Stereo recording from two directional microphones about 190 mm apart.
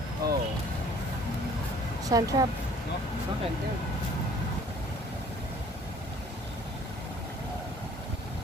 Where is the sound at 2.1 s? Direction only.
20° right (ahead or behind).